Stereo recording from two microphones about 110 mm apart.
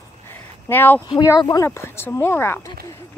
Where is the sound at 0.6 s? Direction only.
20° left (ahead or behind).